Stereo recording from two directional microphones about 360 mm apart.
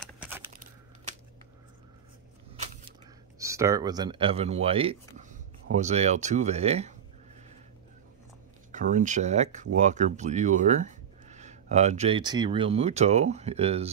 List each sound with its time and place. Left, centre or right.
0.0 s a sound: centre
3.3 s speech: centre
8.7 s speech: right